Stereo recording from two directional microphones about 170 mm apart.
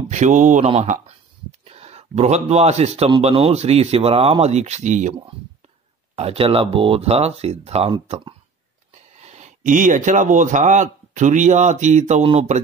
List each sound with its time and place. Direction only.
0.1 s a man's voice: 45° right (ahead or behind)
0.8 s a sound: 40° right (ahead or behind)
3.1 s speech: 35° right (ahead or behind)
6.1 s a man's voice: 35° right (ahead or behind)